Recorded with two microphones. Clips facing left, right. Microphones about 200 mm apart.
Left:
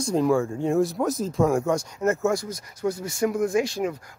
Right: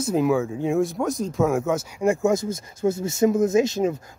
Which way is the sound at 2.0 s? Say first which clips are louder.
Right 5 dB; 15° right (ahead or behind).